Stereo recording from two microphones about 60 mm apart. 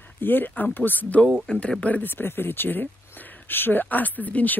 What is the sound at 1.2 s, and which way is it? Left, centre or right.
Speech, centre.